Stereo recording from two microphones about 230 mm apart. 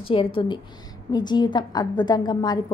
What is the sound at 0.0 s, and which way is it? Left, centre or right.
A woman's voice, left.